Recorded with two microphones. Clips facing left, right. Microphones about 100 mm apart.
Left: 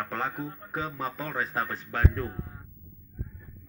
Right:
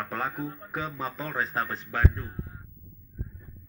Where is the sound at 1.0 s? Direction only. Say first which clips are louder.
Even; 55° left (ahead or behind).